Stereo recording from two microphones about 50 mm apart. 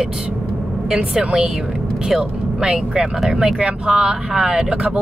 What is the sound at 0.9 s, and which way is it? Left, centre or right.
Speech, right.